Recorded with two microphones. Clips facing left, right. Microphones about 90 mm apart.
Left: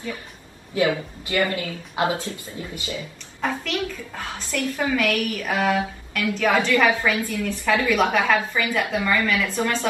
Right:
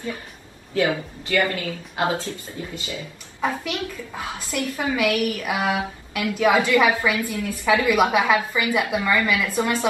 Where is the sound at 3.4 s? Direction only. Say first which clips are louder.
Even; 10° right (ahead or behind).